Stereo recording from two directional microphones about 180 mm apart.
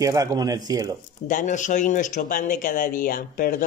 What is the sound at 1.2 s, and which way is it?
Speech, 45° left (ahead or behind).